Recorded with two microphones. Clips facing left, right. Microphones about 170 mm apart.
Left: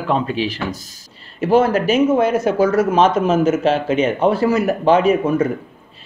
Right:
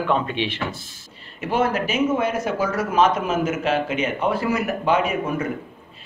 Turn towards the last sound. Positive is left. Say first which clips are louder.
# left 8 dB
turn(degrees=30)  # may be behind; listen again after turning